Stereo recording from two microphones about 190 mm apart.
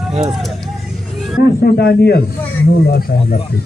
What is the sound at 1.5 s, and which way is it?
Speech, 55° left (ahead or behind).